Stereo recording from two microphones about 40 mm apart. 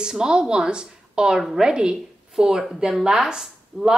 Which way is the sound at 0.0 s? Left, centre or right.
Centre.